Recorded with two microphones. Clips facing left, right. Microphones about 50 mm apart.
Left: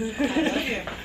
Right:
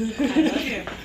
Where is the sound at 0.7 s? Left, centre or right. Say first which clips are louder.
Even; centre.